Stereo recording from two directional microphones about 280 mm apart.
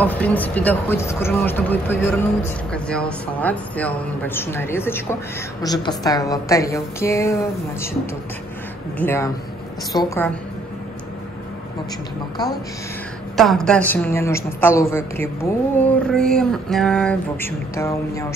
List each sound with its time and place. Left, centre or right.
0.0 s speech: centre
8.9 s speech: centre
13.4 s speech: centre
16.1 s a sound: centre